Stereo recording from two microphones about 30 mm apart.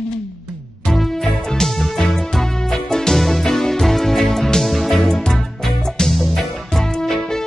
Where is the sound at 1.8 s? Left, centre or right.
Centre.